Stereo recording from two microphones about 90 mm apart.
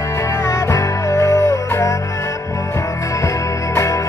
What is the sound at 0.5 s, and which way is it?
Music, 35° left (ahead or behind).